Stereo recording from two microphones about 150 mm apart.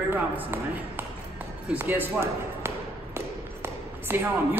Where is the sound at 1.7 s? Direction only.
15° right (ahead or behind).